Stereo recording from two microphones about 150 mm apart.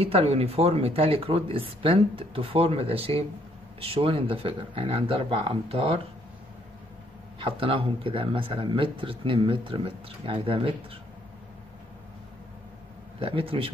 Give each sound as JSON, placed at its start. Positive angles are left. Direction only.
{"t": 0.0, "sound": "speech", "side_deg": -40}
{"t": 7.3, "sound": "speech", "side_deg": -35}
{"t": 13.2, "sound": "speech", "side_deg": -35}